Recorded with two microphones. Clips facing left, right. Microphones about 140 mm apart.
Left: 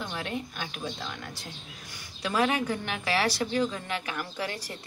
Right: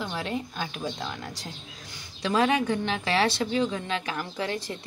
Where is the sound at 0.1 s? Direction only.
30° right (ahead or behind).